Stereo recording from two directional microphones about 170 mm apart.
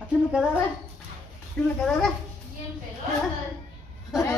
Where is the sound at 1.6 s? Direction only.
5° left (ahead or behind).